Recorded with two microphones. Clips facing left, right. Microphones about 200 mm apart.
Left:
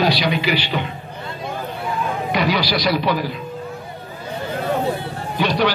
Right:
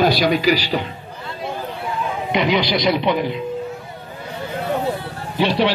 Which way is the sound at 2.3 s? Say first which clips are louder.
Right 3 dB; 20° right (ahead or behind).